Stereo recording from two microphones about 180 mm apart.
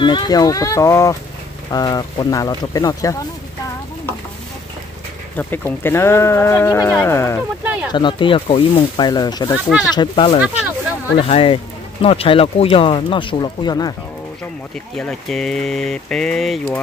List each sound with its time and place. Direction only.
0.0 s speech: 25° left (ahead or behind)
5.4 s speech: 10° left (ahead or behind)
7.6 s speech: 10° right (ahead or behind)
7.9 s speech: 25° left (ahead or behind)
15.0 s speech: 5° left (ahead or behind)